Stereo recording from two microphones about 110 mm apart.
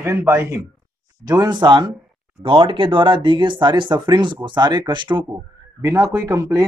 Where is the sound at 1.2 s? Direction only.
35° right (ahead or behind).